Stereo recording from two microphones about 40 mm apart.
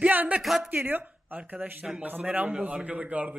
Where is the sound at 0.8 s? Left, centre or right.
Right.